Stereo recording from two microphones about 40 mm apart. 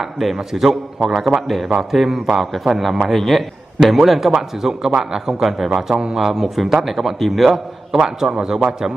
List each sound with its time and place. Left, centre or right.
0.2 s a man's voice: centre
7.9 s a man's voice: centre